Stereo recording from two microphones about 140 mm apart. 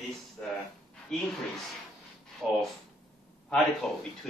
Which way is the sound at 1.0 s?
5° left (ahead or behind).